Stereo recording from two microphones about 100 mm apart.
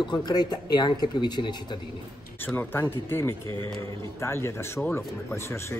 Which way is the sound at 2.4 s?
20° left (ahead or behind).